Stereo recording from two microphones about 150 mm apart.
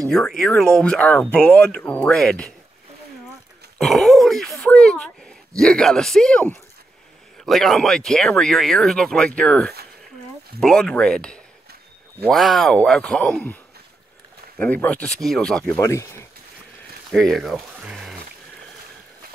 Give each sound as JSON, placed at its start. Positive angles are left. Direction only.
{"t": 0.1, "sound": "speech", "side_deg": 5}
{"t": 3.7, "sound": "speech", "side_deg": 5}
{"t": 14.6, "sound": "speech", "side_deg": 10}
{"t": 15.8, "sound": "speech", "side_deg": 20}
{"t": 17.1, "sound": "speech", "side_deg": 0}